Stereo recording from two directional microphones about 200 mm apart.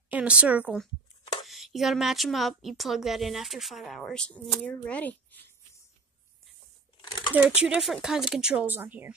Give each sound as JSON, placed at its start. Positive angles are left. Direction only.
{"t": 0.1, "sound": "speech", "side_deg": -5}
{"t": 7.0, "sound": "a sound", "side_deg": 20}
{"t": 7.3, "sound": "speech", "side_deg": -5}